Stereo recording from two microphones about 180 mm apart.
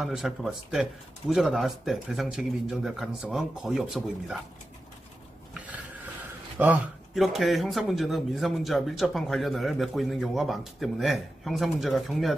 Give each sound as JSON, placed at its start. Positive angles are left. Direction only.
{"t": 0.0, "sound": "speech", "side_deg": 0}
{"t": 6.6, "sound": "speech", "side_deg": -10}